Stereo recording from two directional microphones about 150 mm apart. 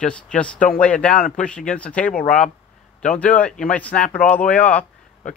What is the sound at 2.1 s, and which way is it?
Speech, 75° left (ahead or behind).